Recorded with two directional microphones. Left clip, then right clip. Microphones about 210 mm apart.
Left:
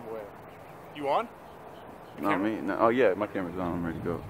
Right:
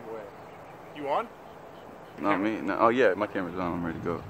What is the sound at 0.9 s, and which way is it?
Speech, 45° left (ahead or behind).